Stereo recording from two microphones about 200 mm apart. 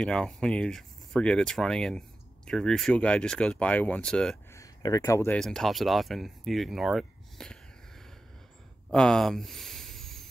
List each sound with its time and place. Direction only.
0.0 s speech: 5° left (ahead or behind)
4.6 s speech: 15° left (ahead or behind); by 7.5 s centre (ahead or behind)
8.9 s a sound: 5° left (ahead or behind)